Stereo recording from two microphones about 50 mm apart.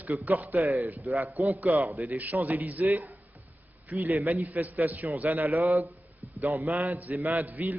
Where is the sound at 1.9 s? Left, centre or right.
Right.